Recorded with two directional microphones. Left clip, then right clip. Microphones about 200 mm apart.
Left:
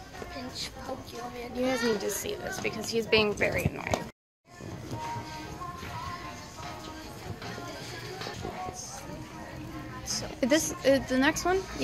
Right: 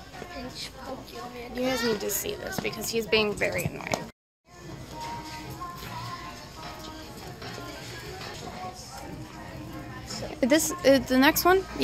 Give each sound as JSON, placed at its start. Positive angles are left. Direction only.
{"t": 1.6, "sound": "a child's voice", "side_deg": -10}
{"t": 3.0, "sound": "a woman's voice", "side_deg": 0}
{"t": 10.4, "sound": "a woman's voice", "side_deg": -20}